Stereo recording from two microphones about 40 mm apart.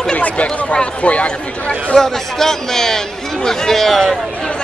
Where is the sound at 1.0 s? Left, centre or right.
Left.